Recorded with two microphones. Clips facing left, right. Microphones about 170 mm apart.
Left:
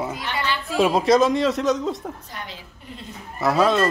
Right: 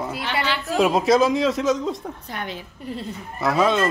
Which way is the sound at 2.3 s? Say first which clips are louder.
Right 5 dB; 60° right (ahead or behind).